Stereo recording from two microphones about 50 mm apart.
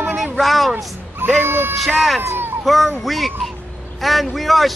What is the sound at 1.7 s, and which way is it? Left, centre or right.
Speech, centre.